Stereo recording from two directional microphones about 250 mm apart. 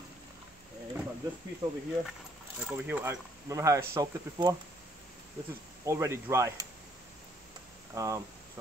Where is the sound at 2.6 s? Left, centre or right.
Centre.